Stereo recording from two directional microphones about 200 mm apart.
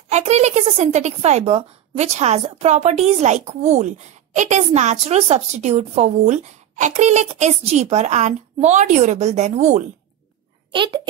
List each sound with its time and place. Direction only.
0.1 s a woman's voice: 35° right (ahead or behind)
10.7 s a child's voice: 25° right (ahead or behind)